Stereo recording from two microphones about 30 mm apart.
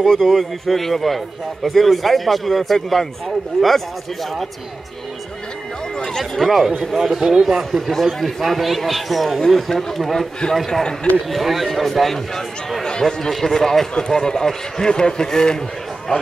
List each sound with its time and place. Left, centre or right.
0.0 s a man's voice: centre
6.4 s speech: centre
7.2 s speech: right
7.4 s speech: centre
7.8 s a man's voice: centre
10.7 s a man's voice: left
11.2 s a man's voice: centre; by 16.2 s left